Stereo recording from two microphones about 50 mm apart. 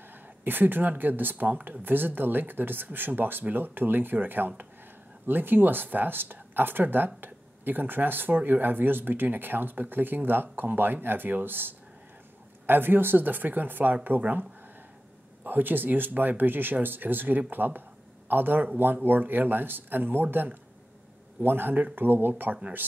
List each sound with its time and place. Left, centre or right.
0.1 s speech: right
15.4 s speech: right